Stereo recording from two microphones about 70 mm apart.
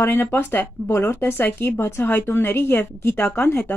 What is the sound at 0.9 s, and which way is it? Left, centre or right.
Speech, left.